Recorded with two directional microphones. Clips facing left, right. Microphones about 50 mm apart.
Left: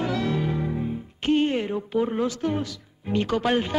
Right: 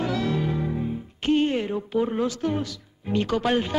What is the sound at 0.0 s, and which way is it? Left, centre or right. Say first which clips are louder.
Music: even; left.